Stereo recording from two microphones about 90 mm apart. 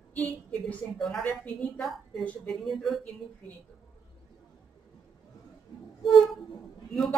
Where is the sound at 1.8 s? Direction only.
Centre (ahead or behind).